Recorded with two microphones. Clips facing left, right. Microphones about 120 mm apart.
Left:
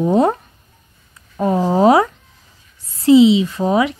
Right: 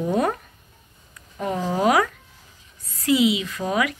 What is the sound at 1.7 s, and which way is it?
A child's voice, 30° left (ahead or behind).